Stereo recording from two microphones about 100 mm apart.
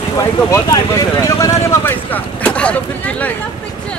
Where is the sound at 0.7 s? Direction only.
40° left (ahead or behind); by 3.3 s 15° left (ahead or behind).